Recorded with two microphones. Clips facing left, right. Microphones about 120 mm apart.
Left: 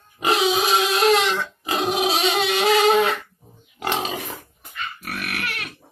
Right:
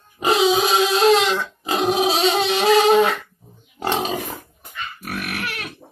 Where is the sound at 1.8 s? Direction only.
25° right (ahead or behind).